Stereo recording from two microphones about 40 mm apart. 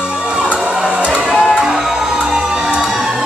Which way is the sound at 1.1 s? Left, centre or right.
Right.